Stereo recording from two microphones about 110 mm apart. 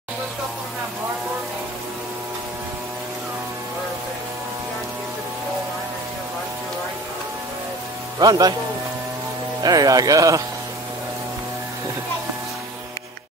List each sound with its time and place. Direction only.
8.2 s speech: 35° right (ahead or behind)
9.6 s speech: 35° right (ahead or behind)